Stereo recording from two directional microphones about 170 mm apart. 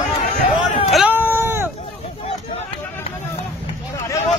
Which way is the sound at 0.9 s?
10° right (ahead or behind).